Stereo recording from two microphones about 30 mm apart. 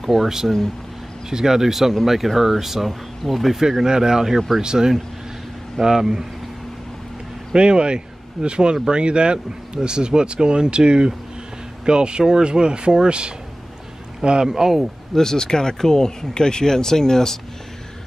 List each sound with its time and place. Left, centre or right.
0.0 s speech: centre
3.8 s speech: right
7.5 s speech: right
14.4 s speech: centre
15.1 s speech: centre